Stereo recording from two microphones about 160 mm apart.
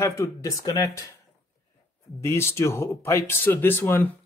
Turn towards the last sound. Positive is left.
turn(degrees=15)  # may be behind; listen again after turning